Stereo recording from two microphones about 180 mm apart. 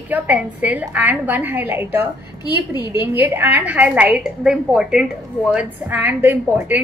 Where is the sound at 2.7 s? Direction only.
25° left (ahead or behind).